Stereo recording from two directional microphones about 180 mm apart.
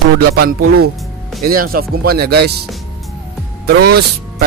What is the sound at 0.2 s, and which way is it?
Speech, 60° right (ahead or behind).